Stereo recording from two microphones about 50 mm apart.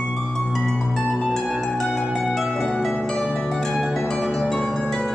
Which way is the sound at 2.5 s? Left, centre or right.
Centre.